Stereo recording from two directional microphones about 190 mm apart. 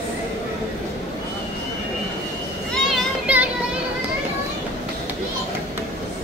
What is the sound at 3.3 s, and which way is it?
Music, 5° right (ahead or behind).